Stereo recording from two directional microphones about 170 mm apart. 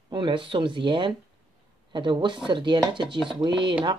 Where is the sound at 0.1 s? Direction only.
30° right (ahead or behind).